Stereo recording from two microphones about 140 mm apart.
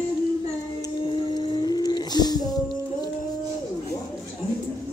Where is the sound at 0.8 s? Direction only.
30° left (ahead or behind).